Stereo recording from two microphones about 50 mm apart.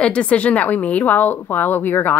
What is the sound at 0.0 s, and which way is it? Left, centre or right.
A woman's voice, left.